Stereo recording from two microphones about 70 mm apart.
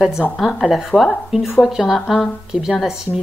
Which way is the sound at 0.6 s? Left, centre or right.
Centre.